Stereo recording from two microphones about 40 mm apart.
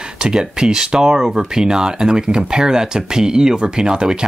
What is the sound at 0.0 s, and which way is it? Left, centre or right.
Speech, centre.